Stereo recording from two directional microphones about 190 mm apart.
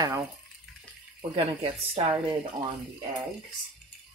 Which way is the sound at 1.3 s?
30° right (ahead or behind).